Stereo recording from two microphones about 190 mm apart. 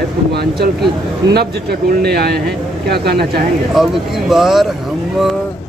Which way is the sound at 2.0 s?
55° right (ahead or behind).